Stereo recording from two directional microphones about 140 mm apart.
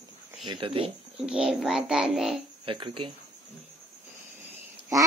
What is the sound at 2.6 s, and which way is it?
Speech, 35° right (ahead or behind).